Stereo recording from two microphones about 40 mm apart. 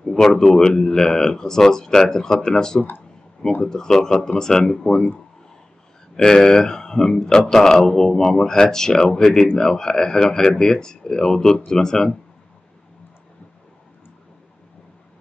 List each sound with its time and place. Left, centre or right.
0.0 s speech: centre
6.1 s speech: centre